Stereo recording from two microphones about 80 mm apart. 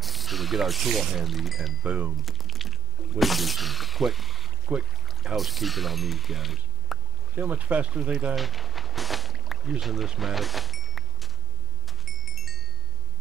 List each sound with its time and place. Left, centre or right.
0.0 s speech: centre
1.9 s speech: centre
2.2 s a sound: centre
4.7 s speech: centre
5.0 s speech: centre
7.3 s speech: centre
8.4 s a sound: centre
12.0 s wind chime: centre